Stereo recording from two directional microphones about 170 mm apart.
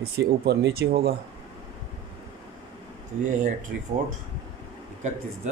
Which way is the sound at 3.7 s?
65° right (ahead or behind).